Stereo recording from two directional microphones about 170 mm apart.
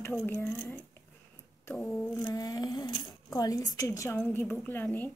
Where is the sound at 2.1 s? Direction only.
20° left (ahead or behind).